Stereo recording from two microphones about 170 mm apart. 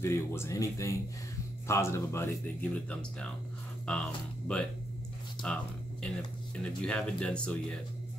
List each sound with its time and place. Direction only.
0.0 s speech: 15° left (ahead or behind)